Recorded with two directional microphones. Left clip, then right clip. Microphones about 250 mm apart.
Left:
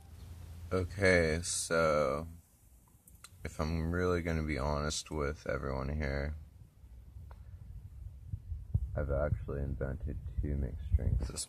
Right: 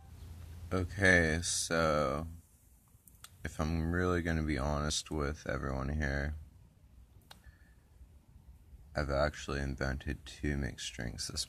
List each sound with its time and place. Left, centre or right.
0.7 s speech: centre
8.9 s speech: centre